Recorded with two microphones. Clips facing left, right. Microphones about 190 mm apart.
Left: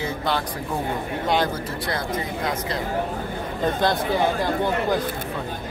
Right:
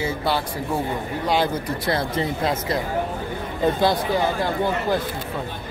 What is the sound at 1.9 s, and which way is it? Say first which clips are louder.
Speech: right 5 dB; 25° right (ahead or behind).